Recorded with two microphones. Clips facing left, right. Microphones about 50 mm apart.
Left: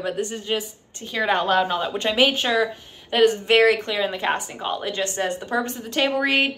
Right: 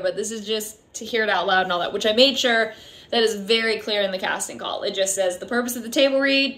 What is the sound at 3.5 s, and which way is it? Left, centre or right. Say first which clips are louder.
A woman's voice: left 4 dB; left.